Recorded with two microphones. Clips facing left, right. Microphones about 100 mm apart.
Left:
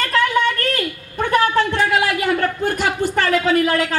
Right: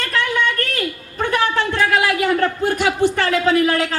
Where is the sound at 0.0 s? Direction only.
45° left (ahead or behind).